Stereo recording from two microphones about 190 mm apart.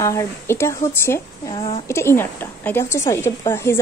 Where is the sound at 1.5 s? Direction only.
30° left (ahead or behind).